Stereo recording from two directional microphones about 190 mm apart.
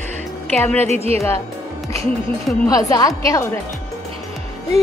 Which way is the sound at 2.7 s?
20° left (ahead or behind).